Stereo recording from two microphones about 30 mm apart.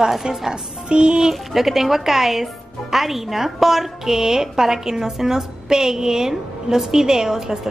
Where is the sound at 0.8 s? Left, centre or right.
Right.